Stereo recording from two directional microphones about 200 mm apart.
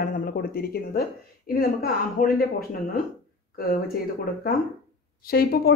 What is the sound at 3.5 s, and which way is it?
Speech, 50° left (ahead or behind).